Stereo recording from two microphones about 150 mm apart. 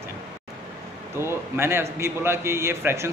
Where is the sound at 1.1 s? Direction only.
15° right (ahead or behind).